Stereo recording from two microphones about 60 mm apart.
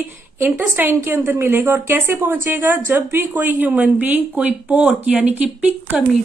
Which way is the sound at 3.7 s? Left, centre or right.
Right.